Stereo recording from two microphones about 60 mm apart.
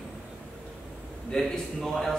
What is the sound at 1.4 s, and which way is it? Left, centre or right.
Speech, centre.